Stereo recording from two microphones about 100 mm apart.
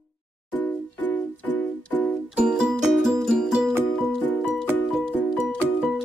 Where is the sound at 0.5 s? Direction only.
15° left (ahead or behind).